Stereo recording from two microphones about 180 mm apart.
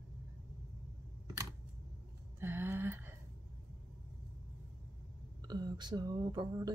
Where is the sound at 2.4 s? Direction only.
10° right (ahead or behind).